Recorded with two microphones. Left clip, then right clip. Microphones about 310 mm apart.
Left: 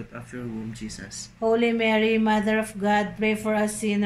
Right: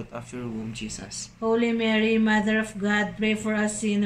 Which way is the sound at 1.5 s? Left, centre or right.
Centre.